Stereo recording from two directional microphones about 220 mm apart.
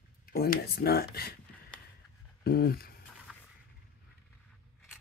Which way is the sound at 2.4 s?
45° left (ahead or behind).